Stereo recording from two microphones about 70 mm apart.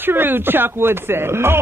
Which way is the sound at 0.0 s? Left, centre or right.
Right.